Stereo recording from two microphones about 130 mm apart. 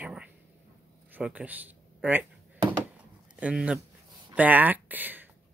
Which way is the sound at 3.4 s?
10° right (ahead or behind).